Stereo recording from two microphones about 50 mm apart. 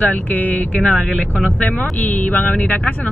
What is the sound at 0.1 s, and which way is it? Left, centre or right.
Speech, left.